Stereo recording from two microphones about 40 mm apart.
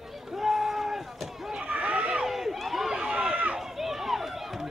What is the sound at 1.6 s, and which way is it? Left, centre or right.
Run, right.